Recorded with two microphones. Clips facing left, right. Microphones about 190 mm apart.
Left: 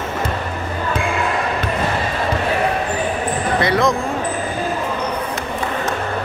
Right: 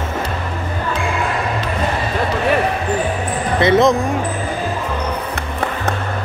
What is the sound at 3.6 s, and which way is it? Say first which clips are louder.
Speech: right 6 dB; 20° right (ahead or behind).